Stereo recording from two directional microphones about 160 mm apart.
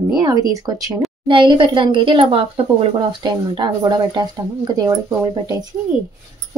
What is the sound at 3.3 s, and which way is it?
Speech, 25° right (ahead or behind).